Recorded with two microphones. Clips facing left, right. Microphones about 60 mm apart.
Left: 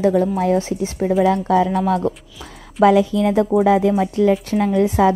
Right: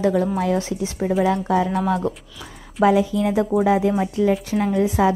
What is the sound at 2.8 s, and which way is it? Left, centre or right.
Speech, left.